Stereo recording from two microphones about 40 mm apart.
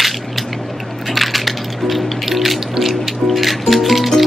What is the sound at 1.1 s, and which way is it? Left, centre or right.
Music, centre.